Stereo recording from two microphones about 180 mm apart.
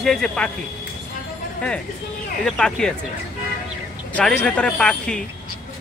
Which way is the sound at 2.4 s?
5° left (ahead or behind).